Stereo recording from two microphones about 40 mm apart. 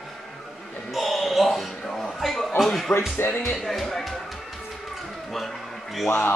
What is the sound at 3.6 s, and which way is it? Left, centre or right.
Speech, centre.